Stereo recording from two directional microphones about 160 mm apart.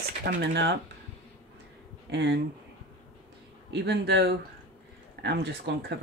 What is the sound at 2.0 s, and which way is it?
Speech, 90° right.